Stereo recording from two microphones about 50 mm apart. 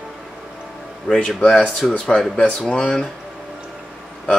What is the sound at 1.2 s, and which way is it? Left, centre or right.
Speech, centre.